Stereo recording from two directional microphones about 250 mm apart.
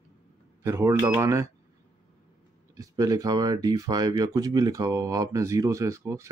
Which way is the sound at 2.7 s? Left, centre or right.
Centre.